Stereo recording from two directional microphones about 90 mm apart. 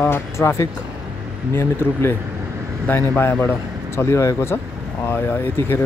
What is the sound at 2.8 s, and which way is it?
Speech, 20° left (ahead or behind).